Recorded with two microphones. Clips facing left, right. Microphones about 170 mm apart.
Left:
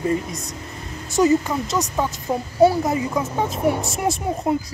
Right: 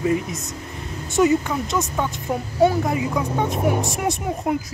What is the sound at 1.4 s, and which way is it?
Speech, centre (ahead or behind).